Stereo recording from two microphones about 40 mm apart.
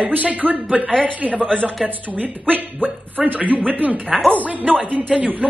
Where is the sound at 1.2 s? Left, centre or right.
Right.